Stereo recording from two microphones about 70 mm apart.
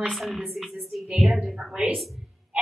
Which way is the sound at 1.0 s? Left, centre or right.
Centre.